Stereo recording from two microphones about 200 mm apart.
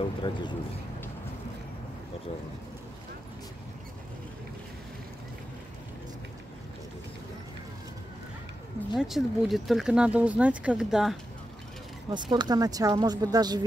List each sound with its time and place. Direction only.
0.0 s speech: 25° left (ahead or behind)
8.9 s speech: centre (ahead or behind)
12.1 s speech: 20° right (ahead or behind)